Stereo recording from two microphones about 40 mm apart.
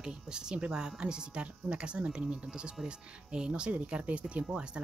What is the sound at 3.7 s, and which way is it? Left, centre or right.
Speech, right.